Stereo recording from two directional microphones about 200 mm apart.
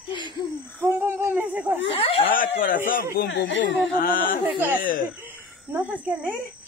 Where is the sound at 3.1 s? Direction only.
55° left (ahead or behind).